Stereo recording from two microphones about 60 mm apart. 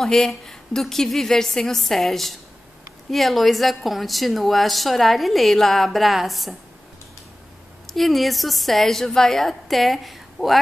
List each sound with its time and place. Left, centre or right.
0.0 s a woman's voice: centre
7.8 s a woman's voice: centre